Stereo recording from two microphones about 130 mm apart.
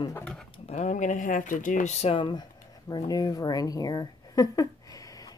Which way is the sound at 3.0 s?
30° left (ahead or behind).